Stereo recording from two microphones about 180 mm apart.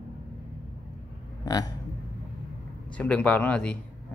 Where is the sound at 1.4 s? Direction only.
20° left (ahead or behind).